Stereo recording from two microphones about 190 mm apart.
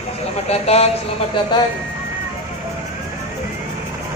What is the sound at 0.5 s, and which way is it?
Speech, 35° left (ahead or behind).